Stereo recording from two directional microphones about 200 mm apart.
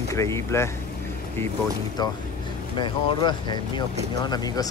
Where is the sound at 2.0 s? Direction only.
20° left (ahead or behind).